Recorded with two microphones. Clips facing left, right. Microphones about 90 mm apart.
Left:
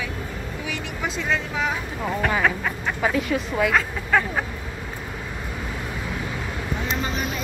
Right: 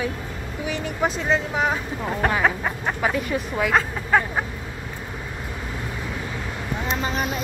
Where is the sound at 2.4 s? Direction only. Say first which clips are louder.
Right 1 dB; 25° right (ahead or behind).